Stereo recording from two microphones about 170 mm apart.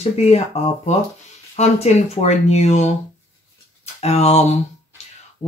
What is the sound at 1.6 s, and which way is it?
Speech, 40° left (ahead or behind).